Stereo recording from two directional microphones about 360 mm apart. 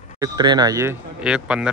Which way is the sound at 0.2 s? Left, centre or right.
Centre.